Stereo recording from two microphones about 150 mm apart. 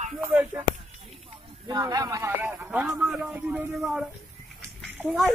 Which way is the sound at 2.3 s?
15° right (ahead or behind).